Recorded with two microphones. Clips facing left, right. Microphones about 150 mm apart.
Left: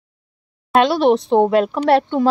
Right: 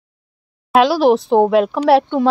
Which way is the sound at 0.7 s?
Centre (ahead or behind).